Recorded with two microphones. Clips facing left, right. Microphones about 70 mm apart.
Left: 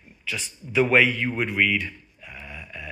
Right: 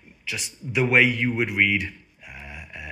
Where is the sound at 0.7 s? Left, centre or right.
Centre.